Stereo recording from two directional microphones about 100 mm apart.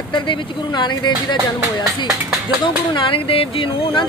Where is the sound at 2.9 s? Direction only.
60° left (ahead or behind).